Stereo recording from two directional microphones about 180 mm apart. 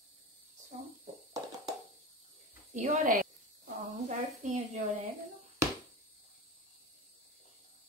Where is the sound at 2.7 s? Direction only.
40° right (ahead or behind).